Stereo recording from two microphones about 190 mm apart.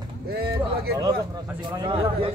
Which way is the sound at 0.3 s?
60° right (ahead or behind).